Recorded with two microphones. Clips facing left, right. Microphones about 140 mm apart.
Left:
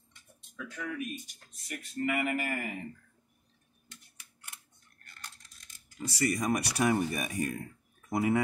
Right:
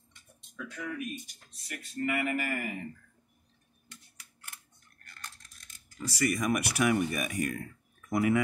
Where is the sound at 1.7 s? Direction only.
20° left (ahead or behind).